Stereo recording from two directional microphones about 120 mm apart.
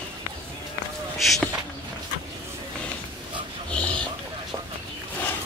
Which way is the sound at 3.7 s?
10° left (ahead or behind).